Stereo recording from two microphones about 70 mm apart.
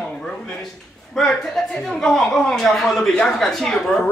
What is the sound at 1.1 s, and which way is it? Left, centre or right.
A man's voice, centre.